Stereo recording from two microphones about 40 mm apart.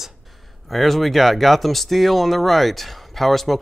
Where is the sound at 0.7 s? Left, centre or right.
Centre.